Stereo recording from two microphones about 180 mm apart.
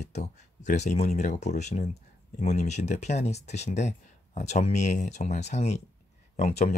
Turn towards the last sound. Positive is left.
turn(degrees=40)  # may be behind; listen again after turning